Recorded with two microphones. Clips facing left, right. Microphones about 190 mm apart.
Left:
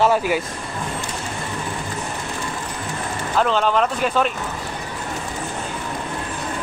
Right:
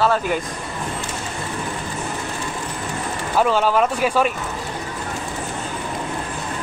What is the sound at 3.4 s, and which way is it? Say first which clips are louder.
Speech: right 1 dB; 10° right (ahead or behind).